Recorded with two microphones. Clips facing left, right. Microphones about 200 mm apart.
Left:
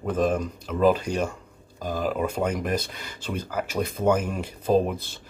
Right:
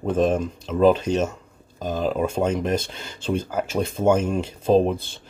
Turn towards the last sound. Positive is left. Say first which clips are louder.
# right 4 dB
turn(degrees=-25)  # may be behind; listen again after turning